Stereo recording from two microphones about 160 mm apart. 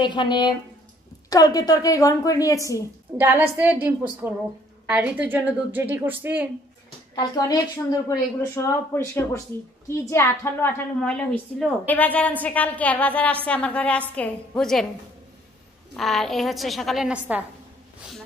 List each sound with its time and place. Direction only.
0.0 s a woman's voice: 30° left (ahead or behind)
3.2 s a woman's voice: 15° right (ahead or behind)
7.2 s a woman's voice: 25° left (ahead or behind); by 14.9 s 5° left (ahead or behind)
16.0 s a woman's voice: centre (ahead or behind)